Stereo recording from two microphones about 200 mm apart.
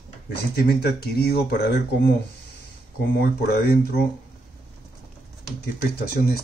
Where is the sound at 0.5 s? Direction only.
55° left (ahead or behind).